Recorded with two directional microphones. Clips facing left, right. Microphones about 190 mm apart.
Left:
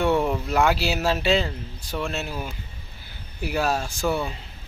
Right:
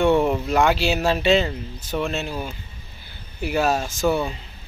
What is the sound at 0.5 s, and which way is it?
Speech, 5° left (ahead or behind).